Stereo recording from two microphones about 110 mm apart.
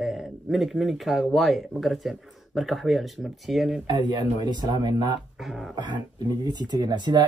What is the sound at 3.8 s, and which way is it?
Speech, 40° right (ahead or behind).